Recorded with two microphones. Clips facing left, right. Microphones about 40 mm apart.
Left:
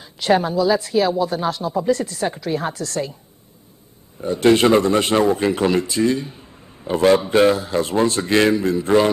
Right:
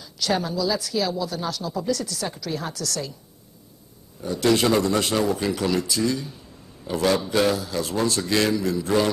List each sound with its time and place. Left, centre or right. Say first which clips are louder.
0.0 s a man's voice: left 7 dB; left
4.2 s a man's voice: left 6 dB; left